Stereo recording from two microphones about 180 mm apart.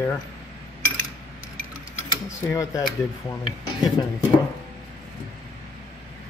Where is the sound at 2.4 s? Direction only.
20° left (ahead or behind).